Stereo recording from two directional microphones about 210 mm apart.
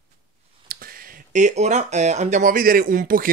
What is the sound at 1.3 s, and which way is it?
Speech, 35° right (ahead or behind).